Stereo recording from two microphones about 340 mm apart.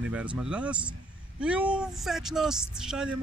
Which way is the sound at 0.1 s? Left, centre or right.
Centre.